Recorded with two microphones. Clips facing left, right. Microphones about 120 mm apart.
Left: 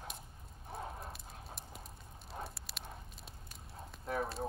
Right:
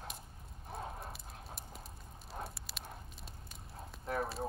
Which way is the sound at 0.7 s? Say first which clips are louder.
Even; centre (ahead or behind).